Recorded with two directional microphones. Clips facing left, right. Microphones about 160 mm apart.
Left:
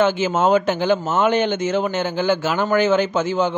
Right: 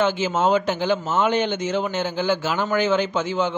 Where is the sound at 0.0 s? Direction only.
55° left (ahead or behind).